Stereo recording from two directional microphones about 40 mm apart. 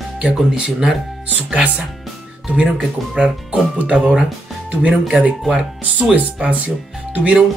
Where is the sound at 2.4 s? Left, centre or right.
Right.